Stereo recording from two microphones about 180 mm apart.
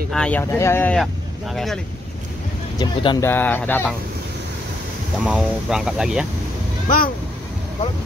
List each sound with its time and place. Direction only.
0.1 s speech: 5° left (ahead or behind)
2.8 s speech: 25° left (ahead or behind)
3.2 s speech: 10° left (ahead or behind)
5.2 s speech: 5° right (ahead or behind)